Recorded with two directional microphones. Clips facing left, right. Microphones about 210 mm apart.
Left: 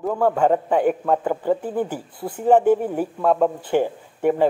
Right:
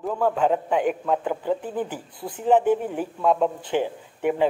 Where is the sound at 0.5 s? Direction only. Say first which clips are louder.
Left 4 dB; 40° left (ahead or behind).